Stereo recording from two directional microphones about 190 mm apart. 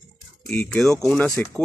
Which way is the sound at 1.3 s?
10° left (ahead or behind).